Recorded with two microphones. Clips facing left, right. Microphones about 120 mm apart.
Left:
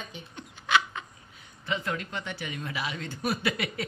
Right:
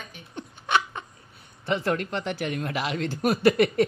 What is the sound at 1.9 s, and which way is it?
Speech, 55° right (ahead or behind).